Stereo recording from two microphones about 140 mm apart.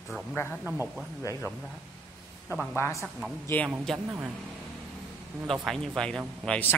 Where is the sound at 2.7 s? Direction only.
20° left (ahead or behind).